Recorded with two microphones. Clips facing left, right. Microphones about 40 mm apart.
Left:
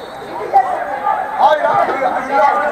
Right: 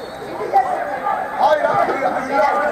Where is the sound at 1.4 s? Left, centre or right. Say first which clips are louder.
Left 3 dB; left.